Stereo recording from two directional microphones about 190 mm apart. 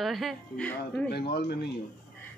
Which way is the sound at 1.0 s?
55° left (ahead or behind).